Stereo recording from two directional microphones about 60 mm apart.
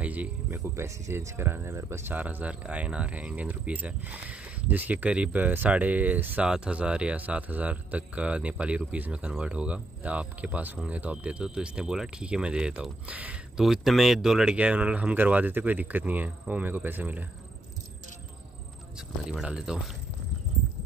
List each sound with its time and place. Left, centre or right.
0.0 s speech: right
0.5 s speech: right
0.8 s speech: right
2.1 s speech: right
13.6 s speech: centre
14.5 s speech: right
18.9 s speech: centre